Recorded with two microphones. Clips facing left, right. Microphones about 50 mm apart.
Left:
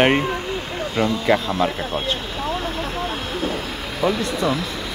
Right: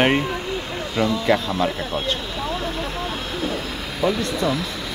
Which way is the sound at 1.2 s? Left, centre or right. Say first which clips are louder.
Left 1 dB; centre.